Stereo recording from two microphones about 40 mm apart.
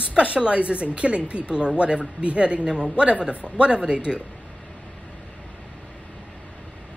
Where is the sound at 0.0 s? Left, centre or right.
Right.